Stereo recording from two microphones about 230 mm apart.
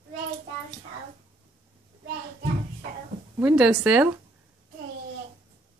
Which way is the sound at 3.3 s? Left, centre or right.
Centre.